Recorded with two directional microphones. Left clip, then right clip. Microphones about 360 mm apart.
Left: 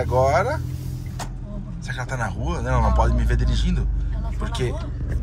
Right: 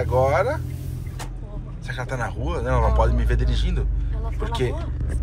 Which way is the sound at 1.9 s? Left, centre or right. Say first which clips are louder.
Even; centre.